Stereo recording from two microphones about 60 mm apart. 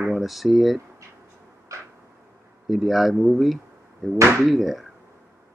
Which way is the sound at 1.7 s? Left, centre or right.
Right.